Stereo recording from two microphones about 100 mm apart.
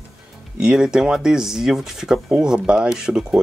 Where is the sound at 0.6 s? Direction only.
5° right (ahead or behind).